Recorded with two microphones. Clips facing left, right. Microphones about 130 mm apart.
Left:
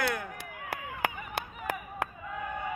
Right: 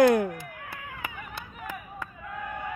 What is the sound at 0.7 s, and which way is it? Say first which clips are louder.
Cat: left 5 dB; 90° left.